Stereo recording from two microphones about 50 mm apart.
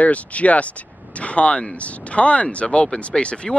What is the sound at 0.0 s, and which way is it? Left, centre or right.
Speech, left.